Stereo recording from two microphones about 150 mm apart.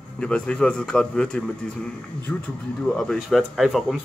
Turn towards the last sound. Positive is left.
turn(degrees=0)  # may be behind; listen again after turning